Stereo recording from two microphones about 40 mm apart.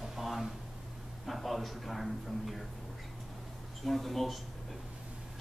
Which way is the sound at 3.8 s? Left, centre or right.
Centre.